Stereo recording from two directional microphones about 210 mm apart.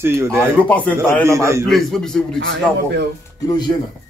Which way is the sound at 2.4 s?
65° right (ahead or behind).